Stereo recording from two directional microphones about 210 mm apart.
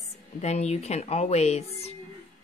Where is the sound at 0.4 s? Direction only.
30° left (ahead or behind).